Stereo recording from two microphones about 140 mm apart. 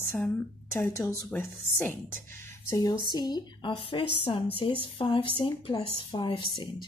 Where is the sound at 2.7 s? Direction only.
25° left (ahead or behind).